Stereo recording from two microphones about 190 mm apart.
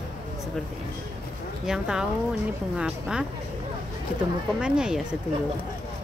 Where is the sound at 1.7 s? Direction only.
5° right (ahead or behind).